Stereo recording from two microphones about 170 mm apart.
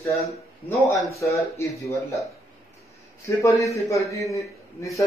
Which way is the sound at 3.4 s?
20° left (ahead or behind).